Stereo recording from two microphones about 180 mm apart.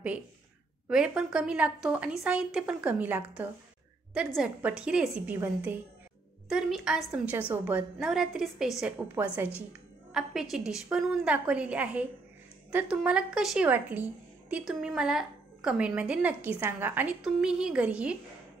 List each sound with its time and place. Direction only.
0.8 s a woman's voice: 5° right (ahead or behind)